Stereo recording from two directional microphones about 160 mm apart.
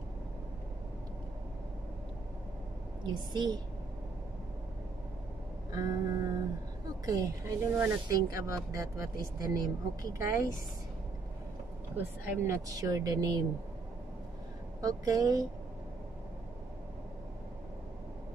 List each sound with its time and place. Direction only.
3.0 s speech: 25° right (ahead or behind)
5.7 s speech: 25° right (ahead or behind)
12.3 s speech: 20° right (ahead or behind)
14.8 s speech: 25° right (ahead or behind)